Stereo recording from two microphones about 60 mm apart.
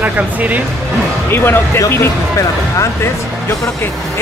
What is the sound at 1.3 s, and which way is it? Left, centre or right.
Speech, left.